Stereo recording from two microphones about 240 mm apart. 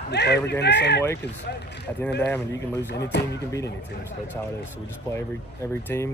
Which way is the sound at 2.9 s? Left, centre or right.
Left.